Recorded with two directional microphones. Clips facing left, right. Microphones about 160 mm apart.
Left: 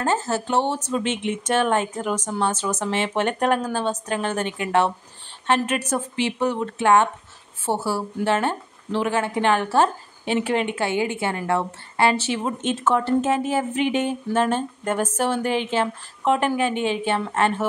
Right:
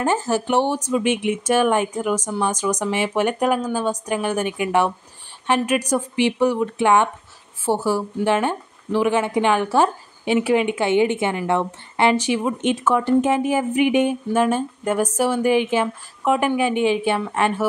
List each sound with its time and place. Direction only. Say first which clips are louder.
0.0 s speech: right 3 dB; 15° right (ahead or behind)